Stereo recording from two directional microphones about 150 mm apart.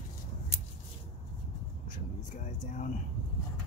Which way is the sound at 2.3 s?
55° left (ahead or behind).